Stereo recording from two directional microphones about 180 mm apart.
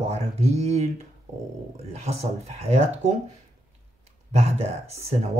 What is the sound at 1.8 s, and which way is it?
Speech, 35° right (ahead or behind).